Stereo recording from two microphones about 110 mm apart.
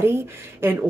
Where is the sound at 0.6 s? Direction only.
20° right (ahead or behind).